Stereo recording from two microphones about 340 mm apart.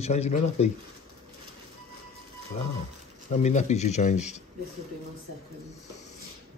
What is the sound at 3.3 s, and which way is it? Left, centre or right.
Speech, centre.